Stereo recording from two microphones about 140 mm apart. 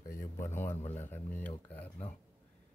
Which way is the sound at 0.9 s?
15° left (ahead or behind).